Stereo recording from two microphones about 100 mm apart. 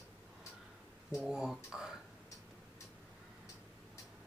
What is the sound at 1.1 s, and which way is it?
Speech, 5° right (ahead or behind).